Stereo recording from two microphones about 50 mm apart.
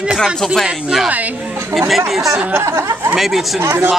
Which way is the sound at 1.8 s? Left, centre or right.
Centre.